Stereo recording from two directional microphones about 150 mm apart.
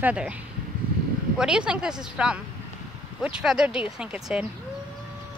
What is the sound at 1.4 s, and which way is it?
Speech, 5° right (ahead or behind).